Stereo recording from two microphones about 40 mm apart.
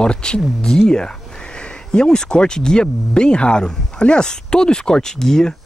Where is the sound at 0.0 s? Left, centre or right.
Left.